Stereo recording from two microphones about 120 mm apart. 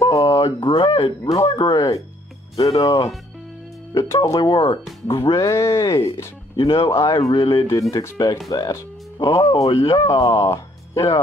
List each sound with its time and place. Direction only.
0.0 s a sound: 30° left (ahead or behind)
0.7 s speech: 45° left (ahead or behind)
1.3 s speech: 35° left (ahead or behind)